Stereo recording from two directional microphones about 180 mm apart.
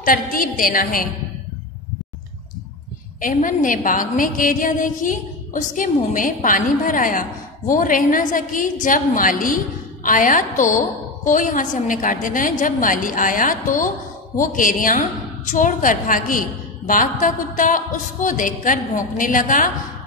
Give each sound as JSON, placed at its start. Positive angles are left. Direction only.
{"t": 0.0, "sound": "a woman's voice", "side_deg": 50}
{"t": 3.2, "sound": "a woman's voice", "side_deg": 50}